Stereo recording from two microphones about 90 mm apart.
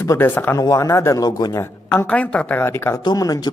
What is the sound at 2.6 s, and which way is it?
Speech, 30° left (ahead or behind).